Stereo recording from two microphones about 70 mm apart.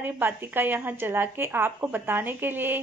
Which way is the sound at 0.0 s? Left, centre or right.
Right.